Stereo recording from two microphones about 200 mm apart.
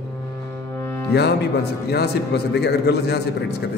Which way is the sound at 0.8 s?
10° left (ahead or behind).